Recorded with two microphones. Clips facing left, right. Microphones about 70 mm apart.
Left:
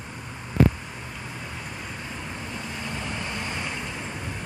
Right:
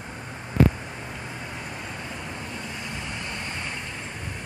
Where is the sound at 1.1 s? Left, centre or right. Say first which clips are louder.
Right 1 dB; centre.